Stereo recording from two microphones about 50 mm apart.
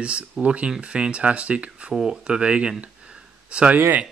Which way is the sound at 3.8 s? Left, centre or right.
Right.